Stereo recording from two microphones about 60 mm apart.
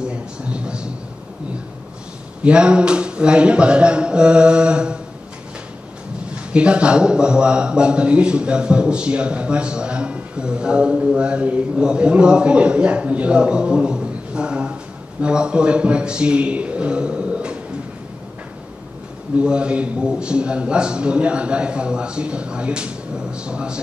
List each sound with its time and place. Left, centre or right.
0.0 s a sound: centre
2.4 s a man's voice: centre
6.3 s a man's voice: centre
11.1 s mantra: centre
11.7 s a man's voice: centre
19.3 s a man's voice: centre